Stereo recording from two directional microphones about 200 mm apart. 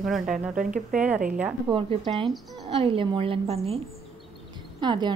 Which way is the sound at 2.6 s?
25° right (ahead or behind).